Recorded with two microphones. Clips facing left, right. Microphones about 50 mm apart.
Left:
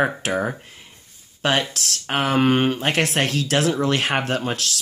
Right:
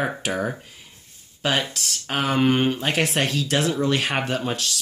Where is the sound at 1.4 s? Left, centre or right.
Left.